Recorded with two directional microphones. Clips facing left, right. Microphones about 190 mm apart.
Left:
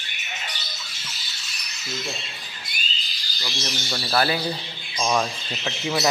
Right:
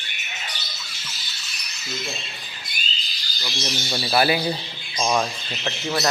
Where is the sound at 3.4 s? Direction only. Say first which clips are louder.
Right 2 dB; 10° right (ahead or behind).